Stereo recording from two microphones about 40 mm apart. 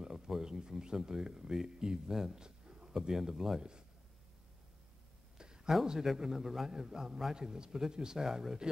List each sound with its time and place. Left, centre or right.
0.0 s speech: centre
5.4 s a sound: centre
5.9 s a man's voice: centre